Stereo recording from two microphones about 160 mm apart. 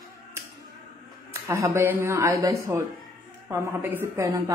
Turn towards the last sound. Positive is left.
turn(degrees=-15)  # may be behind; listen again after turning